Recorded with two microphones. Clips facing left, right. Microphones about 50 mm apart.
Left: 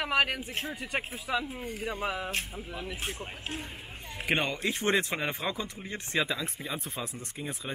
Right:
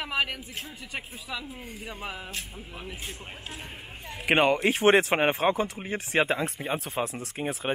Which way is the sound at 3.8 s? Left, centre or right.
Right.